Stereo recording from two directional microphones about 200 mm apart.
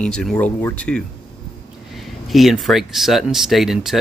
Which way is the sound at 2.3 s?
Centre (ahead or behind).